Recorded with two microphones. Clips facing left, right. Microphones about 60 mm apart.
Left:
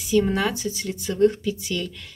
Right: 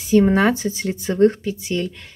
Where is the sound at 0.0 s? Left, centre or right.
Right.